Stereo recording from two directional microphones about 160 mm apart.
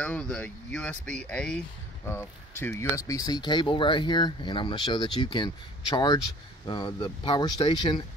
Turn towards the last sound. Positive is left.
turn(degrees=25)  # may be behind; listen again after turning